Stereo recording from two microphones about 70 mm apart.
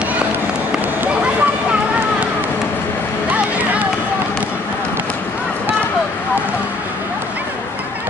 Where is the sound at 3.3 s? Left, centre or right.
Right.